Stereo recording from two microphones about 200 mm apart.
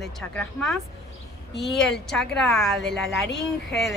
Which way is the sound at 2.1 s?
Centre (ahead or behind).